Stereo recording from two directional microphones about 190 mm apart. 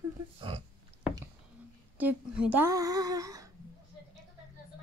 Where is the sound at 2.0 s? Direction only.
10° right (ahead or behind).